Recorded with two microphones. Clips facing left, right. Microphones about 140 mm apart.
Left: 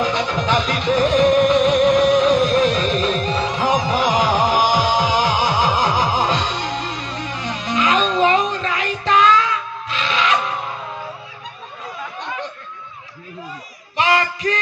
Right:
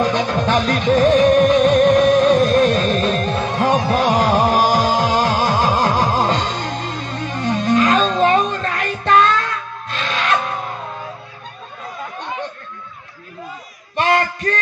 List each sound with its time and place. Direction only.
0.0 s music: 55° right (ahead or behind)
13.9 s music: 55° right (ahead or behind)